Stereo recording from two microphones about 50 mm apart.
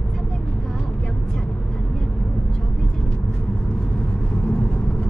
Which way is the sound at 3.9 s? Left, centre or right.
Centre.